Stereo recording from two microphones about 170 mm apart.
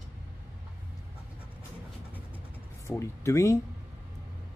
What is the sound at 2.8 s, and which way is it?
Speech, 15° left (ahead or behind).